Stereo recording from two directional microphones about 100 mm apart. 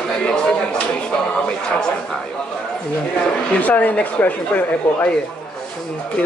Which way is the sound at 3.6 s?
15° left (ahead or behind).